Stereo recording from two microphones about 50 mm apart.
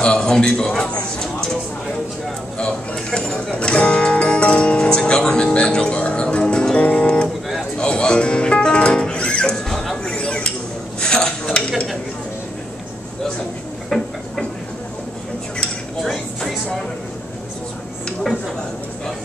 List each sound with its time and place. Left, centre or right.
0.0 s a man's voice: centre
2.6 s dishes: centre
3.5 s music: centre
9.7 s a sound: centre
11.0 s dishes: centre
13.8 s a sound: centre
15.6 s dishes: centre